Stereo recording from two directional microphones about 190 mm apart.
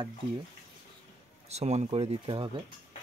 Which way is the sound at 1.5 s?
35° right (ahead or behind).